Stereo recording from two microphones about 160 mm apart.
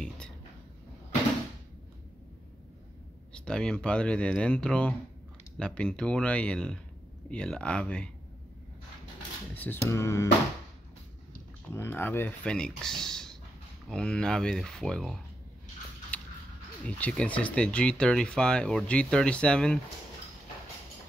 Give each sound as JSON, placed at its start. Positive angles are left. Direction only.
{"t": 3.3, "sound": "speech", "side_deg": 5}
{"t": 9.6, "sound": "speech", "side_deg": 15}
{"t": 11.7, "sound": "speech", "side_deg": 15}
{"t": 16.1, "sound": "creak", "side_deg": 10}
{"t": 16.8, "sound": "speech", "side_deg": 10}